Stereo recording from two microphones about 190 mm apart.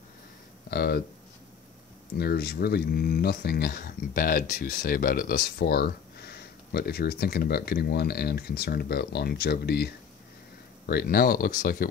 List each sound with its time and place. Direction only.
0.7 s speech: 55° left (ahead or behind)
2.1 s speech: 55° left (ahead or behind)